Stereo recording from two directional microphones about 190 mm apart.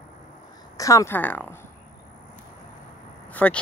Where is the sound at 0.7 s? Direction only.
15° left (ahead or behind).